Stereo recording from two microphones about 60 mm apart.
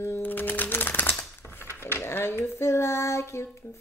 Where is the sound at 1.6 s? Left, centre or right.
Left.